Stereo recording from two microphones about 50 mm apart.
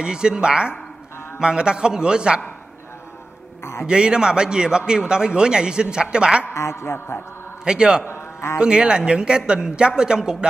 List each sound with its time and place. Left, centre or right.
0.0 s a man's voice: centre
3.8 s a man's voice: centre
6.5 s a man's voice: left
7.6 s a man's voice: centre
8.0 s a sound: left
8.5 s a man's voice: centre